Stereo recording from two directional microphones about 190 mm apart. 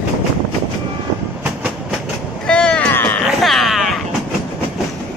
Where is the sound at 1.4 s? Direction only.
5° right (ahead or behind).